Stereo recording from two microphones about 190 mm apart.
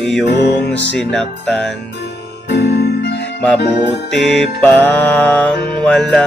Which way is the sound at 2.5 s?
65° left (ahead or behind).